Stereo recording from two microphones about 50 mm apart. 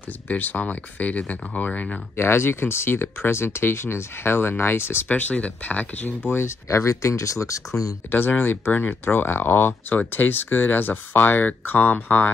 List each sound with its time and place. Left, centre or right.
0.3 s speech: left
2.1 s speech: left
5.0 s speech: left
6.3 s speech: left
6.8 s speech: left
8.1 s speech: left